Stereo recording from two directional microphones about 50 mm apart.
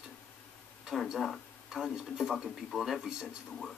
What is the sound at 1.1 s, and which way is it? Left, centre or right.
Speech, centre.